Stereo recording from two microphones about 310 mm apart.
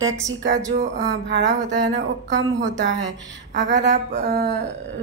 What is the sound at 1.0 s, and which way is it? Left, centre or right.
Speech, right.